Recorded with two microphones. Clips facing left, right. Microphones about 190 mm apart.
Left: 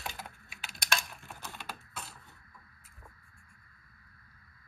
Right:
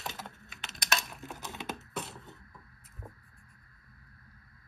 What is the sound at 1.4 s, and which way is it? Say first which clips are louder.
Computer keyboard: right 5 dB; 20° right (ahead or behind).